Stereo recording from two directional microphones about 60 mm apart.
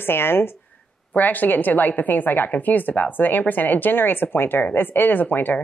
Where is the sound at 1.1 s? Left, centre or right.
Left.